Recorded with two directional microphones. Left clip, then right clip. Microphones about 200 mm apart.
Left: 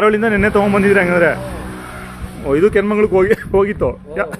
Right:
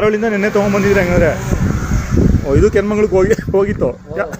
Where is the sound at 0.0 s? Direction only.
10° left (ahead or behind).